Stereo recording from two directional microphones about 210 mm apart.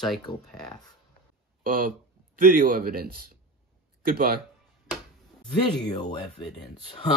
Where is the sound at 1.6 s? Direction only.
40° right (ahead or behind).